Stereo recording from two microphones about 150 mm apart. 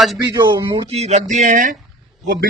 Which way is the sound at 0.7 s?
40° right (ahead or behind).